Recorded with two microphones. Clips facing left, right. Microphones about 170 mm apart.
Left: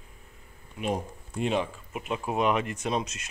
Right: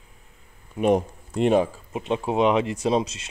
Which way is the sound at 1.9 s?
30° right (ahead or behind).